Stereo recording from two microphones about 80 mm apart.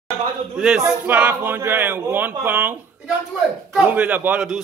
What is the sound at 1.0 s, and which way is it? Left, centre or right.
Speech, right.